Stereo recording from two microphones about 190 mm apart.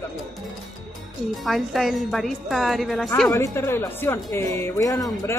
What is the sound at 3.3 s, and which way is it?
Speech, 15° left (ahead or behind).